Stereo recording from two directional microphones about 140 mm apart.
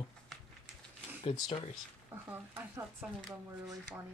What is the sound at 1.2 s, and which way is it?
Speech, 45° left (ahead or behind).